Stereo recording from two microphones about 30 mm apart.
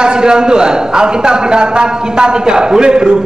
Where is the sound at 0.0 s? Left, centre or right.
Right.